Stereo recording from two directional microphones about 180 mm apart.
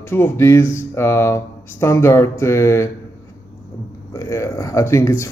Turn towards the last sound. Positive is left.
turn(degrees=15)  # may be behind; listen again after turning